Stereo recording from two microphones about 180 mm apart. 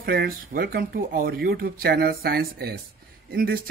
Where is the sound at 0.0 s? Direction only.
60° right (ahead or behind).